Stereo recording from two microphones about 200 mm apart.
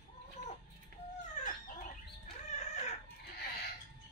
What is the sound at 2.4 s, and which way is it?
Chicken, 35° left (ahead or behind).